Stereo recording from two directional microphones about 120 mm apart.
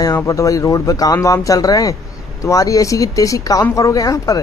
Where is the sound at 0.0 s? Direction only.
30° left (ahead or behind).